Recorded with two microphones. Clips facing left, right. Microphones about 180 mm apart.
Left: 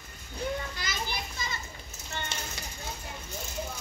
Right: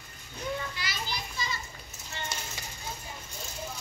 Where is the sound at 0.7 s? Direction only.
50° left (ahead or behind).